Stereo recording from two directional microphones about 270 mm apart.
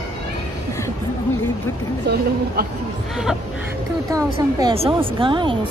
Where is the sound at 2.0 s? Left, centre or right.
Right.